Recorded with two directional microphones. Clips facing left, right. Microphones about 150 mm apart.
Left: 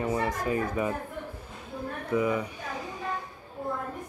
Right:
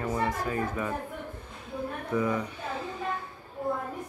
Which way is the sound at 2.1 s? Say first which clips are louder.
Left 2 dB; 10° left (ahead or behind).